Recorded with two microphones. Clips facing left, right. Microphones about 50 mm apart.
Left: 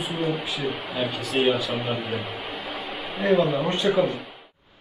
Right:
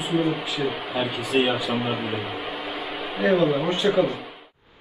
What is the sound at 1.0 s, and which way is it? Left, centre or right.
A man's voice, centre.